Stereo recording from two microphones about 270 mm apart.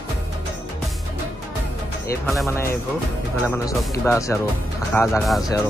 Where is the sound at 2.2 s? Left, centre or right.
Centre.